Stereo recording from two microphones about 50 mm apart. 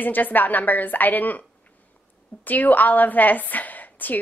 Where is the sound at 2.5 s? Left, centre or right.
Left.